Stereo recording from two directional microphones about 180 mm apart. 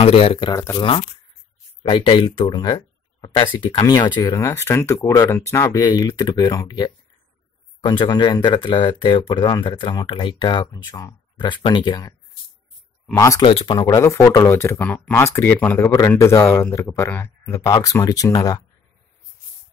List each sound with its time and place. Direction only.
0.0 s speech: 35° left (ahead or behind)
13.1 s speech: 15° left (ahead or behind)
13.5 s speech: 30° left (ahead or behind)
13.8 s speech: 15° left (ahead or behind)